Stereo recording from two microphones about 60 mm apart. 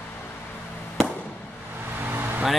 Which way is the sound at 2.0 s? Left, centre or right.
Right.